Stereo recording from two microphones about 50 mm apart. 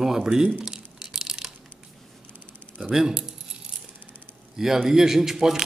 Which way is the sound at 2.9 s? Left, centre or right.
Centre.